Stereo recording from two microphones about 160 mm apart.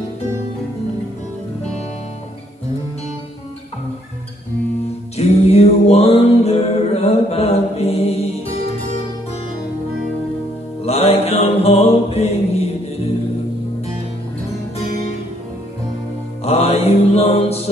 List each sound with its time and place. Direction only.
5.1 s music: 40° left (ahead or behind)
10.8 s music: 40° left (ahead or behind)
16.4 s mantra: 40° left (ahead or behind)